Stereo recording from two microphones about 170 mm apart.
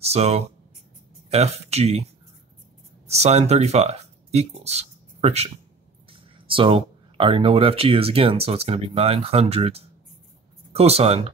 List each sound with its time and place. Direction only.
0.0 s speech: 40° right (ahead or behind)
3.1 s speech: 40° right (ahead or behind)